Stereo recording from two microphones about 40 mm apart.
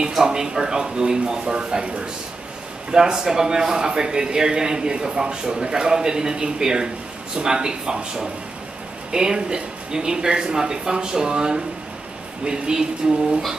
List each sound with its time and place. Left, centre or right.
0.3 s a man's voice: centre